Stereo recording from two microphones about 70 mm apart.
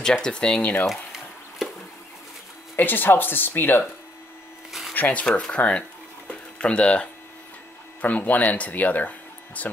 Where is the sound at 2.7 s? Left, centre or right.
Left.